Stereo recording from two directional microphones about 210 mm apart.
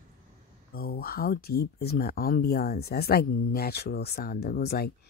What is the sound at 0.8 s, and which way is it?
Speech, 45° left (ahead or behind).